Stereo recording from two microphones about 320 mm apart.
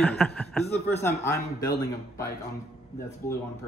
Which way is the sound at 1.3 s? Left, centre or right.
Left.